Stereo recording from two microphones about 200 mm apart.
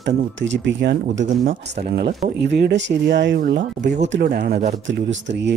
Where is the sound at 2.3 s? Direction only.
60° right (ahead or behind).